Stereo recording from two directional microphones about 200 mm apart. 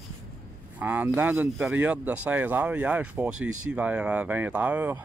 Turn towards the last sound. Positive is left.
turn(degrees=-5)  # may be behind; listen again after turning